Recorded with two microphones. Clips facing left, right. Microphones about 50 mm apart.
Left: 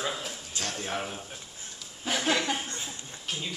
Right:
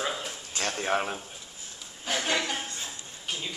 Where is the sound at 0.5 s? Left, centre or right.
Right.